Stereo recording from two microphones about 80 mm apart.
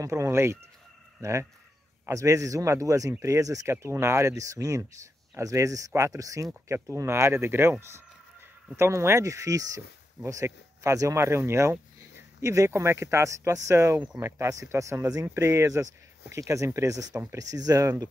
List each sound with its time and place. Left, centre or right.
0.0 s speech: right
3.7 s speech: right
8.7 s speech: right